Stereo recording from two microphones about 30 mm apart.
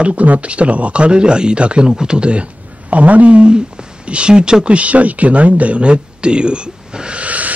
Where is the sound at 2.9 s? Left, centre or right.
Right.